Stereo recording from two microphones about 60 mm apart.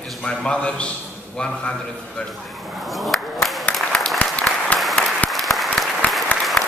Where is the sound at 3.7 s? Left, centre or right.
Left.